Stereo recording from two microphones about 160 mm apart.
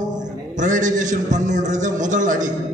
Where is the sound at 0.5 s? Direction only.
55° right (ahead or behind).